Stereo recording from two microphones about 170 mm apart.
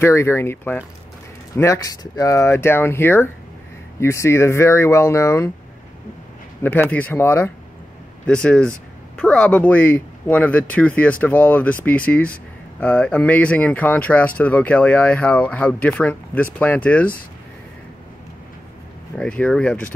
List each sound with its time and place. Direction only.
0.0 s speech: 15° left (ahead or behind)
6.6 s speech: 10° left (ahead or behind)
19.1 s speech: 5° left (ahead or behind)